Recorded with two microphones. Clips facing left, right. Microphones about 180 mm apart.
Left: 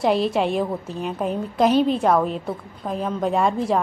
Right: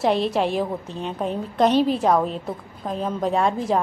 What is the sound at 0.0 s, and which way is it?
A woman's voice, centre (ahead or behind).